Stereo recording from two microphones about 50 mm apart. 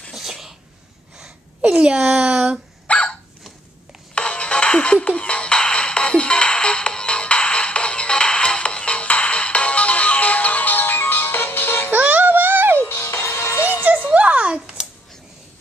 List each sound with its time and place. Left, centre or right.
0.1 s a sound: centre
1.6 s speech: centre
2.9 s dog: left
4.1 s music: left
11.9 s music: right
12.7 s music: left
13.8 s a sound: right